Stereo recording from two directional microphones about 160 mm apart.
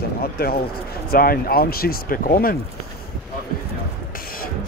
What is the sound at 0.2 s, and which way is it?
Speech, 70° left (ahead or behind).